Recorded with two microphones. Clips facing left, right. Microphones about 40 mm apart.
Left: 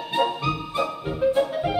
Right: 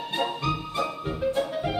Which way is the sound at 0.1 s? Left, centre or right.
Centre.